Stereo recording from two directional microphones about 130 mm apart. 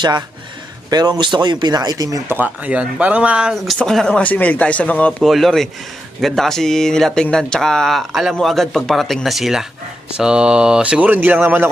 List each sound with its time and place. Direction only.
0.8 s speech: 30° right (ahead or behind)
2.2 s speech: 15° right (ahead or behind)